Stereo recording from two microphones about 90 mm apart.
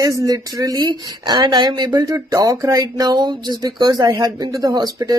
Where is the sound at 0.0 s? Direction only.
40° right (ahead or behind).